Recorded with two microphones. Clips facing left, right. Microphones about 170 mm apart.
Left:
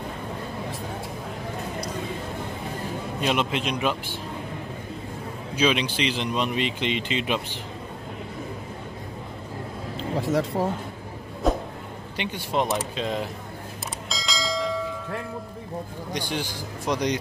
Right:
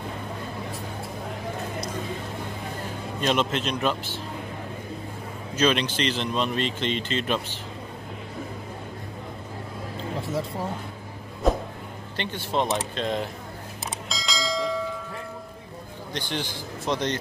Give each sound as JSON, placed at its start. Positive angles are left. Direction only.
{"t": 3.2, "sound": "speech", "side_deg": 10}
{"t": 5.6, "sound": "speech", "side_deg": 10}
{"t": 9.9, "sound": "vehicle", "side_deg": 90}
{"t": 11.4, "sound": "a sound", "side_deg": 0}
{"t": 12.2, "sound": "speech", "side_deg": 10}
{"t": 14.0, "sound": "bell", "side_deg": 0}
{"t": 16.1, "sound": "speech", "side_deg": 10}